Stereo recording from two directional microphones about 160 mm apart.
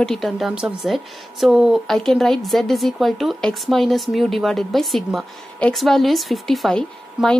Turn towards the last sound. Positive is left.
turn(degrees=5)  # may be behind; listen again after turning